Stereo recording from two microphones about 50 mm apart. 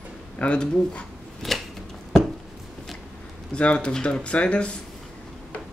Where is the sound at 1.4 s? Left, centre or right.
Centre.